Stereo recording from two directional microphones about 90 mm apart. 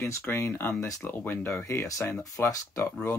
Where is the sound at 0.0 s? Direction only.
30° left (ahead or behind).